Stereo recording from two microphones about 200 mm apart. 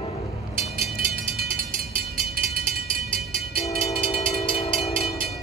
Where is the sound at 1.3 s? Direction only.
45° right (ahead or behind).